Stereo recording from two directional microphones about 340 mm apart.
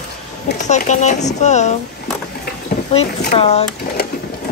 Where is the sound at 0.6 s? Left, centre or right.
Left.